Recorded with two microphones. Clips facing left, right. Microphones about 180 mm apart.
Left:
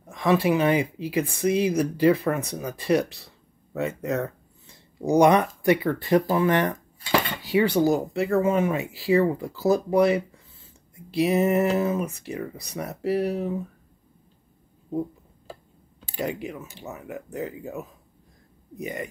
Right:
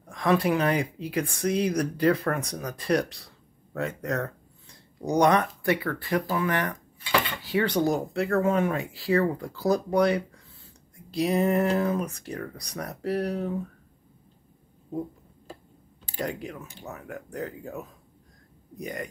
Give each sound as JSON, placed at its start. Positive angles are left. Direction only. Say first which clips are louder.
{"t": 0.0, "sound": "speech", "louder": "left 2 dB", "side_deg": 5}
{"t": 7.4, "sound": "speech", "louder": "left 5 dB", "side_deg": 10}
{"t": 16.2, "sound": "speech", "louder": "left 3 dB", "side_deg": 5}